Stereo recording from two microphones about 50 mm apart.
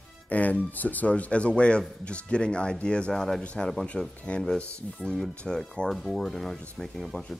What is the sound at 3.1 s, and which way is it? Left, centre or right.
Speech, centre.